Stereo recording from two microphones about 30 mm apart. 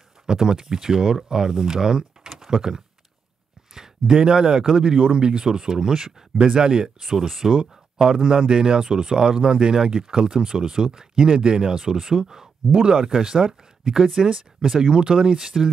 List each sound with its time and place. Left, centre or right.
0.3 s speech: centre
7.0 s speech: centre
7.5 s speech: right
8.8 s speech: right